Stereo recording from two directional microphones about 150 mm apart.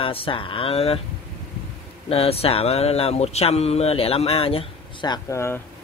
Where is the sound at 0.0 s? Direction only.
35° left (ahead or behind).